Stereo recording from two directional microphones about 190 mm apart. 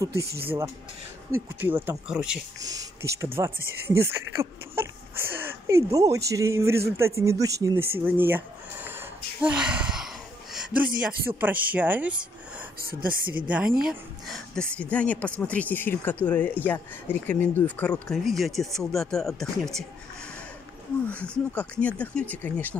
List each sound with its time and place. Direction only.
0.0 s speech: 15° right (ahead or behind)
1.3 s speech: 10° right (ahead or behind)
2.7 s speech: 15° right (ahead or behind)
13.5 s speech: 5° right (ahead or behind)
21.0 s speech: 5° left (ahead or behind)